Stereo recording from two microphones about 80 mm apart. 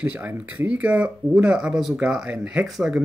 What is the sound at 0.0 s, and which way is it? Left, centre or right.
Speech, centre.